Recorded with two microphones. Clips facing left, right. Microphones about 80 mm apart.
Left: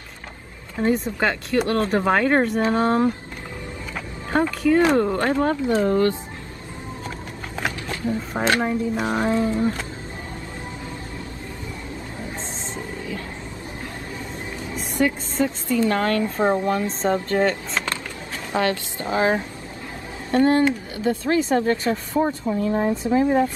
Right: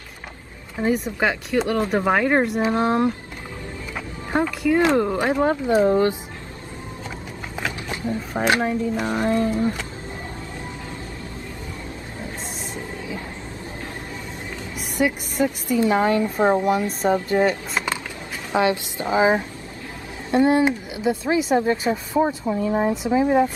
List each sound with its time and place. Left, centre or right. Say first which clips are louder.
1.0 s speech: even; centre
4.3 s a woman's voice: left 1 dB; centre
7.9 s a sound: even; centre
8.6 s speech: even; centre
15.0 s a woman's voice: even; centre